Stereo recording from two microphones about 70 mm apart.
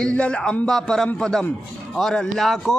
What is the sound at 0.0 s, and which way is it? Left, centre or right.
A man's voice, centre.